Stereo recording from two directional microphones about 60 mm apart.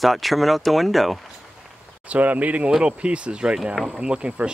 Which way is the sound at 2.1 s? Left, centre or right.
Right.